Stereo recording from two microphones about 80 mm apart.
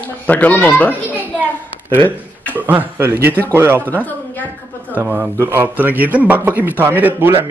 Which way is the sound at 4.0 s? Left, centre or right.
Left.